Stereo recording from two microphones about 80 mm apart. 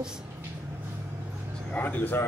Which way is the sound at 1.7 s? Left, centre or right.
Left.